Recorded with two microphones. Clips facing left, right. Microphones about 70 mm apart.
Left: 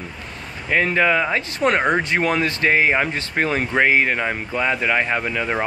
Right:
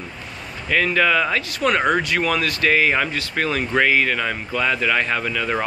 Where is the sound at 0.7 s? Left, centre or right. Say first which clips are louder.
Left 1 dB; left.